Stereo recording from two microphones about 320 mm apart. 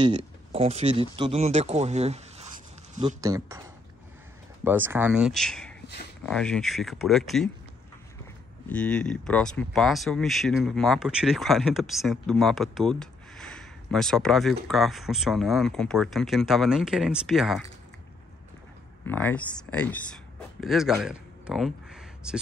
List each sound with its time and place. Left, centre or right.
0.0 s speech: centre
3.2 s speech: centre
4.6 s speech: centre
8.6 s speech: centre
19.0 s speech: centre